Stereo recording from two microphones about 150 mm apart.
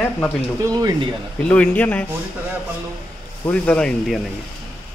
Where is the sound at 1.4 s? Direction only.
10° left (ahead or behind).